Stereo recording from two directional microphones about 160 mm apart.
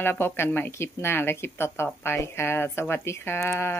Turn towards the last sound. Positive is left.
turn(degrees=15)  # may be behind; listen again after turning